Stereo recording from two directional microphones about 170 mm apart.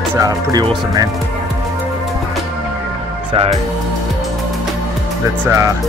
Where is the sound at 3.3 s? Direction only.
35° right (ahead or behind).